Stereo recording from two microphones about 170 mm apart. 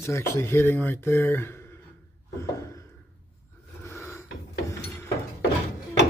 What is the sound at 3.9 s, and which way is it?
Filing, 15° left (ahead or behind).